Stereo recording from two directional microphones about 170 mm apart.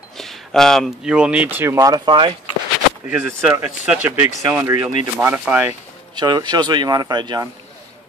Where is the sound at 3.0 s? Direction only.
10° right (ahead or behind).